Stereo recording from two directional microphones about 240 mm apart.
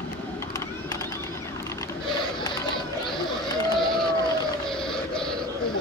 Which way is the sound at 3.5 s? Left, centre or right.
Centre.